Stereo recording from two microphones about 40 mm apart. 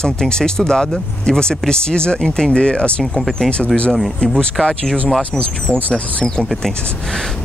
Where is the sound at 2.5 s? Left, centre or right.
Left.